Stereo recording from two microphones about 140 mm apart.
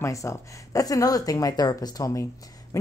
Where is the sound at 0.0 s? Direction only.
20° left (ahead or behind).